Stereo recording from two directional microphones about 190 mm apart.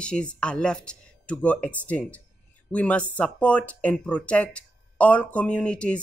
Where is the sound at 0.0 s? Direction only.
5° left (ahead or behind).